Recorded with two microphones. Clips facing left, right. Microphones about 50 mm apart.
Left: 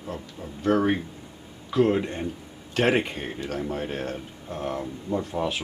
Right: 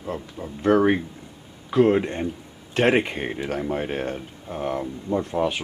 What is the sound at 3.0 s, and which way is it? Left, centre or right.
Speech, right.